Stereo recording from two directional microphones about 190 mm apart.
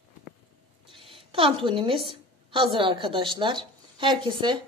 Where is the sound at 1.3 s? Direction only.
25° right (ahead or behind).